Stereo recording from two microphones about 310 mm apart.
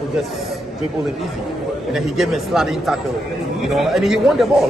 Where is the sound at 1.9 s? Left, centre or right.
Centre.